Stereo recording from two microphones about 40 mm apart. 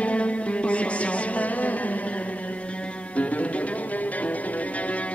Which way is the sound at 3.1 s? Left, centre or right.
Left.